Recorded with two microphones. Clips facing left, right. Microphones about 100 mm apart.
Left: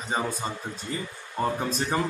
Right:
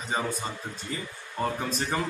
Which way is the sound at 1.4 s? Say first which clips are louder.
Left 2 dB; 30° left (ahead or behind).